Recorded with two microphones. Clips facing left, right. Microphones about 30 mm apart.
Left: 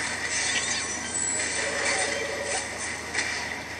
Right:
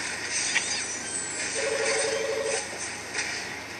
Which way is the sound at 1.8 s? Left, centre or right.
Centre.